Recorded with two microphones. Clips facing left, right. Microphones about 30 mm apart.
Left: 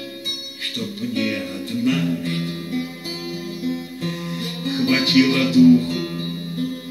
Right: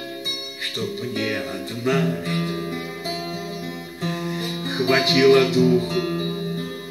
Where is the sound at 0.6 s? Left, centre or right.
Centre.